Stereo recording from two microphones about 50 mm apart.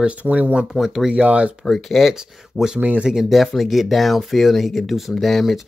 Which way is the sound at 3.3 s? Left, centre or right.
Centre.